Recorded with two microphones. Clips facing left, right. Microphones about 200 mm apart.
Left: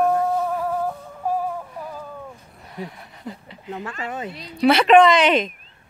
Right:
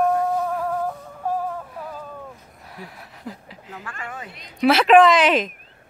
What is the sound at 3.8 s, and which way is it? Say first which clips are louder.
Speech: left 5 dB; 25° left (ahead or behind).